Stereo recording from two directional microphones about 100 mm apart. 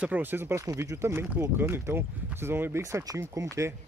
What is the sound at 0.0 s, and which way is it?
Speech, 20° right (ahead or behind).